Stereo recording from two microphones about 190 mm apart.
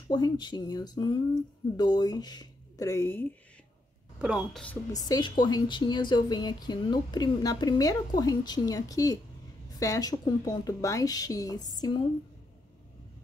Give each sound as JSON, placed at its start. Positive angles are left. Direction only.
{"t": 0.1, "sound": "a woman's voice", "side_deg": 20}
{"t": 4.2, "sound": "speech", "side_deg": -5}
{"t": 4.9, "sound": "a woman's voice", "side_deg": 20}